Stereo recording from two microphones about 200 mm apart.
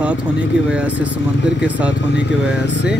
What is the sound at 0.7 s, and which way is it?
Speech, 5° right (ahead or behind).